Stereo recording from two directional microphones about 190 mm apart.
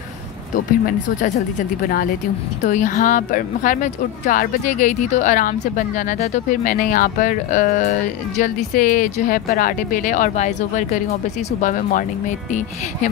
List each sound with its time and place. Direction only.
2.6 s a woman's voice: 40° left (ahead or behind)